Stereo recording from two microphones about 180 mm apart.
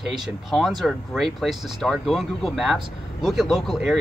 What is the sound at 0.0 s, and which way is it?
Speech, centre (ahead or behind).